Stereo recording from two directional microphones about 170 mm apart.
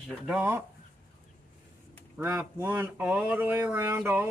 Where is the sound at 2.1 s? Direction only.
10° right (ahead or behind).